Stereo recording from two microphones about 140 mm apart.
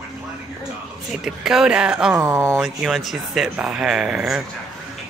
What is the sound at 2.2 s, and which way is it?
Speech, 20° right (ahead or behind).